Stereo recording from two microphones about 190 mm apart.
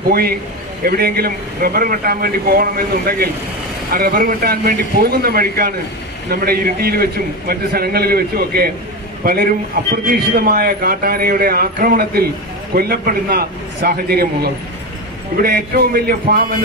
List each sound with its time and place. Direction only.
0.1 s a man's voice: 55° right (ahead or behind)